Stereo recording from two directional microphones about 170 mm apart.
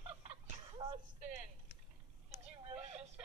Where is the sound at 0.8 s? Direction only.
30° right (ahead or behind).